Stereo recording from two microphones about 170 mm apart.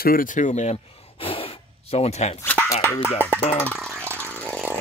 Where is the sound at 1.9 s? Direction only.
35° left (ahead or behind).